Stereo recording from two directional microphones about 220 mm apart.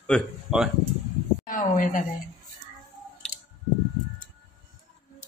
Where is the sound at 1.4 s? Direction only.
35° left (ahead or behind).